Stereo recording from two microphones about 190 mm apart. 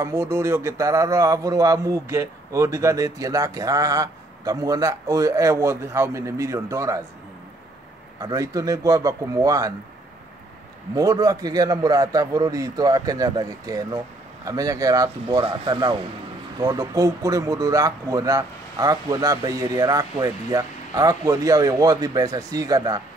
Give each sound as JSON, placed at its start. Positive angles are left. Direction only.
{"t": 0.0, "sound": "speech", "side_deg": -15}
{"t": 8.2, "sound": "speech", "side_deg": -20}
{"t": 11.0, "sound": "speech", "side_deg": -20}